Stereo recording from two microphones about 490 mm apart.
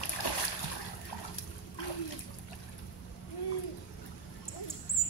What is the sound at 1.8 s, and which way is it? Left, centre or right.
Water, left.